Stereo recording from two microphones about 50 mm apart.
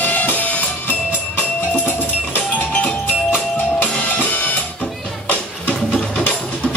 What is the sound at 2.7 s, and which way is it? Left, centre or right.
Music, left.